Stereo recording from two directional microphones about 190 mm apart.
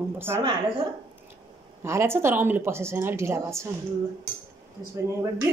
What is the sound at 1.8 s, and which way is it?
A man's voice, 15° right (ahead or behind).